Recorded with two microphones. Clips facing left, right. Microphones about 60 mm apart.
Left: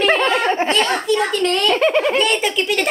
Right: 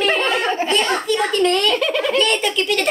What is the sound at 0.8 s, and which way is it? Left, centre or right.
Speech, centre.